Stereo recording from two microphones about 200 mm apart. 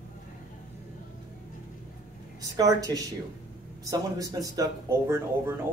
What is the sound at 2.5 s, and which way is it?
A woman's voice, 20° right (ahead or behind).